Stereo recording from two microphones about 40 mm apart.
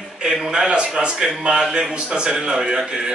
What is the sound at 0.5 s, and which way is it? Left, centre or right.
A man's voice, right.